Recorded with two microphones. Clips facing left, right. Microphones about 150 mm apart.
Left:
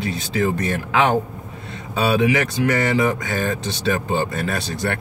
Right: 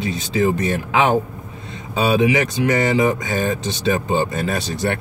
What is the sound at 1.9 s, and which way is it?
Speech, 20° right (ahead or behind).